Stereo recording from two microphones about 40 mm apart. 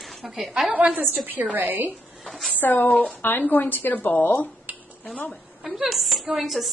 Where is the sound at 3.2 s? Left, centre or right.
Left.